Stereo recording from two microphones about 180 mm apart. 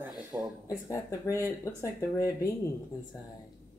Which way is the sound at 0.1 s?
5° right (ahead or behind).